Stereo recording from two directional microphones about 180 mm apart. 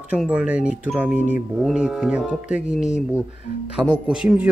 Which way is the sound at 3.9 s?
5° right (ahead or behind).